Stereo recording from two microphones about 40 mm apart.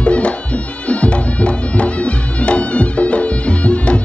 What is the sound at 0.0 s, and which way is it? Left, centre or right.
Music, left.